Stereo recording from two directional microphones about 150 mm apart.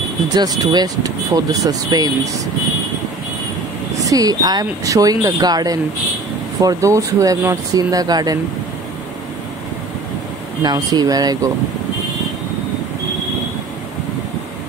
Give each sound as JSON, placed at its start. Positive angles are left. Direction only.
{"t": 0.3, "sound": "speech", "side_deg": -25}
{"t": 4.0, "sound": "speech", "side_deg": -25}
{"t": 10.6, "sound": "speech", "side_deg": -30}